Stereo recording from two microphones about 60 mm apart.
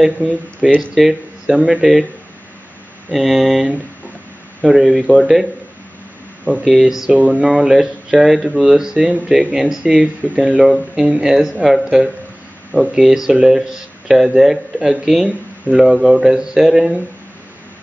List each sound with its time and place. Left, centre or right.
0.0 s speech: centre
3.1 s speech: centre
6.6 s speech: centre
7.2 s speech: right
7.4 s speech: centre
8.7 s speech: centre
12.7 s speech: left
13.3 s speech: centre